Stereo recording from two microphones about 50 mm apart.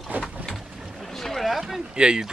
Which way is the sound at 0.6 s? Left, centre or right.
Centre.